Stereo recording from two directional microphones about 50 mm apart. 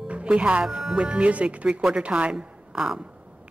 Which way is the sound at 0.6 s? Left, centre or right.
Centre.